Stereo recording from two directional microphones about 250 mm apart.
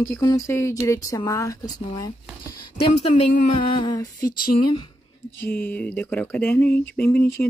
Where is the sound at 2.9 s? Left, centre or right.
Left.